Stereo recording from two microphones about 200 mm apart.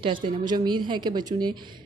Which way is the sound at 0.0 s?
25° right (ahead or behind).